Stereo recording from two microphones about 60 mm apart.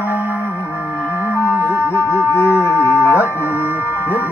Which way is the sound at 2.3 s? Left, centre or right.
Left.